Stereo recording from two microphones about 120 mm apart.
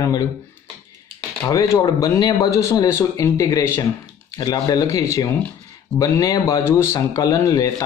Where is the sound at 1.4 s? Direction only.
25° left (ahead or behind).